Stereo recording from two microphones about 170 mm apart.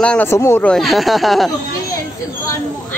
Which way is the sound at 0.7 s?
Centre (ahead or behind).